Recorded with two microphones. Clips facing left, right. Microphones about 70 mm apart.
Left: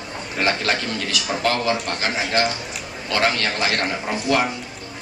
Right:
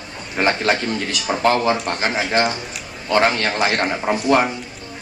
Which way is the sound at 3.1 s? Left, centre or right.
Right.